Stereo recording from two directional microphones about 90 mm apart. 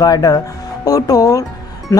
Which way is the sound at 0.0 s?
40° left (ahead or behind).